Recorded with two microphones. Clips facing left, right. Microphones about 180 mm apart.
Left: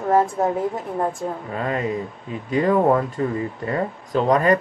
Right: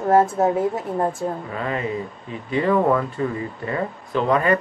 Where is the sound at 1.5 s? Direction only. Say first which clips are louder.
Left 1 dB; 40° left (ahead or behind).